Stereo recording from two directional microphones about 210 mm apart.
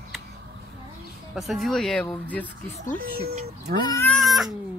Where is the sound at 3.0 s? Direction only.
45° right (ahead or behind).